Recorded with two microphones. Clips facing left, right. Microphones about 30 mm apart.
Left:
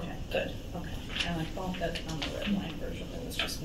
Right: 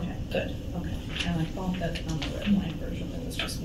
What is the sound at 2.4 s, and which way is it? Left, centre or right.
Speech, centre.